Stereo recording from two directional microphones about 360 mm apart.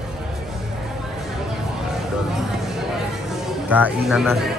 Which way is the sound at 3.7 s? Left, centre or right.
Centre.